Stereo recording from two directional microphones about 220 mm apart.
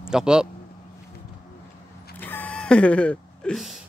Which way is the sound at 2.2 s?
10° left (ahead or behind).